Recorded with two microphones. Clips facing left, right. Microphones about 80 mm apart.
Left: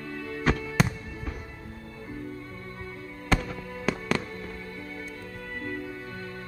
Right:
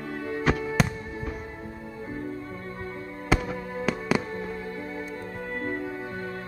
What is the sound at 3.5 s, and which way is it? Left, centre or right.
Music, right.